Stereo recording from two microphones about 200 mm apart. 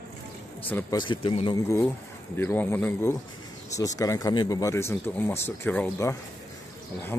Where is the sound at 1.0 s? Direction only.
25° left (ahead or behind).